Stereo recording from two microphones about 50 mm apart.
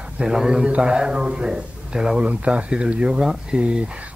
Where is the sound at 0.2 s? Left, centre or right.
Centre.